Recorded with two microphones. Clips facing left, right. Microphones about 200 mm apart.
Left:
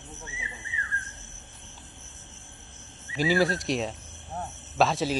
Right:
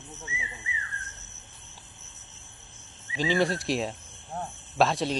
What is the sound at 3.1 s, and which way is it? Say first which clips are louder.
A man's voice: left 1 dB; 5° left (ahead or behind).